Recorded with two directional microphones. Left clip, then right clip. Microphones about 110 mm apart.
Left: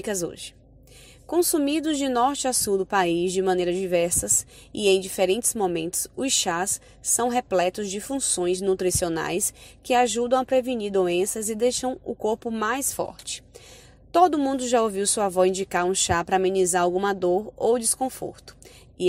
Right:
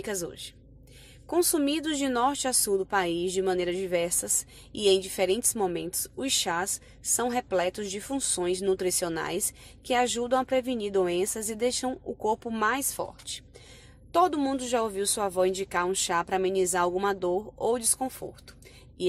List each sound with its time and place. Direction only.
0.0 s speech: 30° left (ahead or behind)
1.3 s a woman's voice: 20° left (ahead or behind)
14.1 s speech: 30° left (ahead or behind)